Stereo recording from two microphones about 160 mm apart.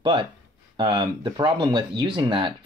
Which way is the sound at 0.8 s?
25° right (ahead or behind).